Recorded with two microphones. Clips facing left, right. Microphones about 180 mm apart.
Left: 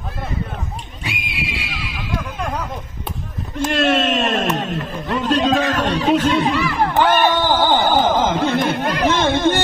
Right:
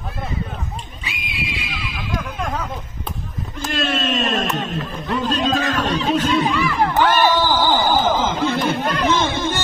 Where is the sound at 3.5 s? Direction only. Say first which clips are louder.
Left 6 dB; 60° left (ahead or behind).